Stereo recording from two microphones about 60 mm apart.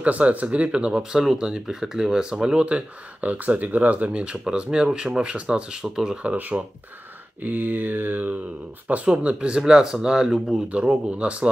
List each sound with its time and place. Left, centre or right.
0.0 s speech: right
6.5 s mantra: right
9.1 s speech: right
10.7 s speech: centre